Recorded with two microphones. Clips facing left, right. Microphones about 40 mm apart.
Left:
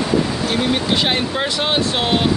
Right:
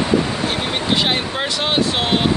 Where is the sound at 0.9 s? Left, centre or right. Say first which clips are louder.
Left 1 dB; centre.